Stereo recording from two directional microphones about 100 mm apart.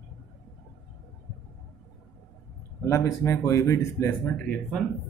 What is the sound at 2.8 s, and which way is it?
Speech, 30° left (ahead or behind).